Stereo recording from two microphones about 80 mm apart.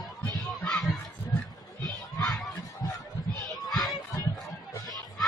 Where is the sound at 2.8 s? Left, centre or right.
Left.